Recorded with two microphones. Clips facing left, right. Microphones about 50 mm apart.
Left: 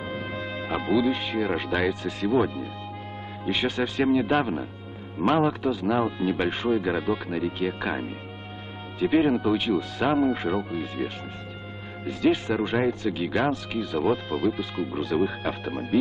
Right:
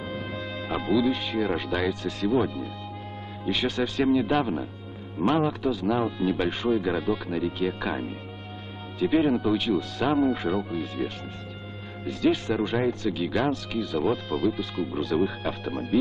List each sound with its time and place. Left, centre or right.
0.0 s speech: left